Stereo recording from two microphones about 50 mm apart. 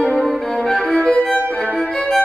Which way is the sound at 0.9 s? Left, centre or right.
Left.